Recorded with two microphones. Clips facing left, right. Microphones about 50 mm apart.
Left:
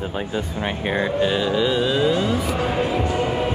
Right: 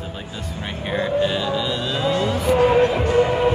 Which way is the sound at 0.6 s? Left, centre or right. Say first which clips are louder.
Even; left.